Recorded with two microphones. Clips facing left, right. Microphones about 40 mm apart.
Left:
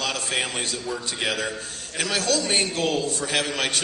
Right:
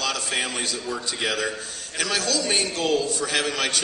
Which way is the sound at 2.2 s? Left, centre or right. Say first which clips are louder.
Left 4 dB; left.